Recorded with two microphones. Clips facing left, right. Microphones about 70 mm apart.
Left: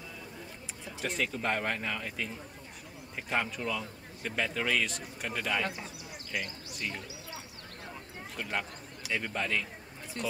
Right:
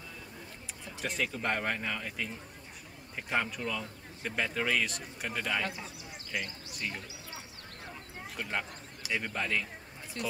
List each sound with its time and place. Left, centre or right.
1.0 s a man's voice: centre
8.4 s a man's voice: centre